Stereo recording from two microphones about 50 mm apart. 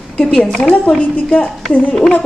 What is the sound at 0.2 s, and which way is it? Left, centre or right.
Speech, centre.